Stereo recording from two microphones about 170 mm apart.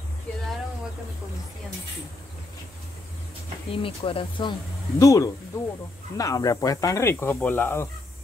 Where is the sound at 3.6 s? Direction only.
35° left (ahead or behind).